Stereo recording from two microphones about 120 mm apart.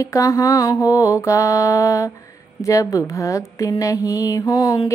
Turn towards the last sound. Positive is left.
turn(degrees=30)  # may be behind; listen again after turning